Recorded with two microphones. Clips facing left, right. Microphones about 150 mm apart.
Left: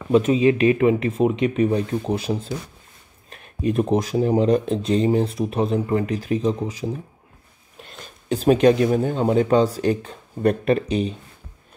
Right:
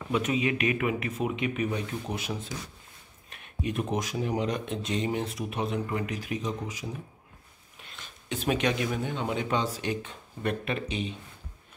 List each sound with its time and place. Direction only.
0.1 s speech: 30° left (ahead or behind)